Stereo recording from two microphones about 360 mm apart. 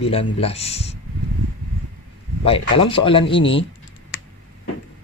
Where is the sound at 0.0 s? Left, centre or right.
Centre.